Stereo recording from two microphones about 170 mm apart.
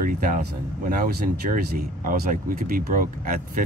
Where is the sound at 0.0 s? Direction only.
55° right (ahead or behind).